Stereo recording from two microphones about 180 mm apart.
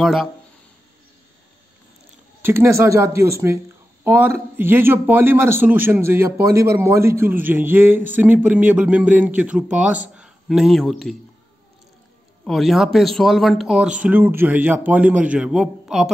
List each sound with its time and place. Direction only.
0.0 s speech: centre (ahead or behind)
2.4 s a man's voice: 15° right (ahead or behind); by 11.1 s centre (ahead or behind)
12.4 s a man's voice: centre (ahead or behind)